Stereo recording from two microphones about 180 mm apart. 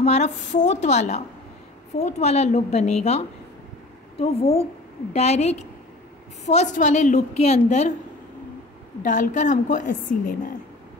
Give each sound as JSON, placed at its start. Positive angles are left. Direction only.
{"t": 0.0, "sound": "a woman's voice", "side_deg": 40}
{"t": 9.0, "sound": "a woman's voice", "side_deg": 45}